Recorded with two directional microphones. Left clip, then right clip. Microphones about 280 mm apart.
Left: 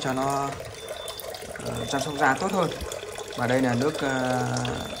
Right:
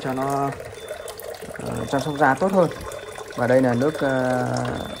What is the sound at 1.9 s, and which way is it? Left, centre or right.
Speech, centre.